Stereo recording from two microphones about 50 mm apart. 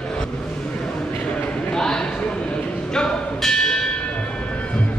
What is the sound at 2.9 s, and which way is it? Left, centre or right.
Music, centre.